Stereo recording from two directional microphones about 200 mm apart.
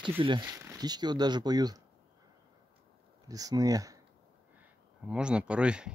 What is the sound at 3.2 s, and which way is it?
Speech, 20° right (ahead or behind).